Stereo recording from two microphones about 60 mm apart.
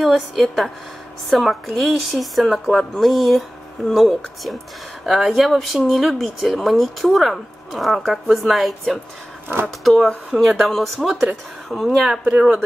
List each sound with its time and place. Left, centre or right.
0.0 s speech: centre
12.3 s speech: centre